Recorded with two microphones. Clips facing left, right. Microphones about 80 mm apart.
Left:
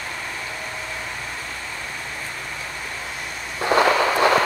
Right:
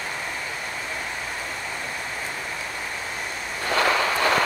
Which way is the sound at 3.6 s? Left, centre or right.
Left.